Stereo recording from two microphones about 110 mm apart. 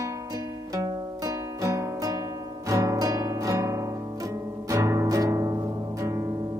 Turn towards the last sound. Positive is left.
turn(degrees=-25)  # may be behind; listen again after turning